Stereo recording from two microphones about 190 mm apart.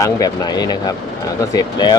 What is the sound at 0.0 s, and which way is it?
Speech, 20° left (ahead or behind).